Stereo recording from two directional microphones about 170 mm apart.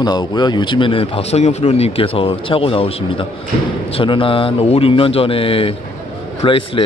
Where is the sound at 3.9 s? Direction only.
30° left (ahead or behind).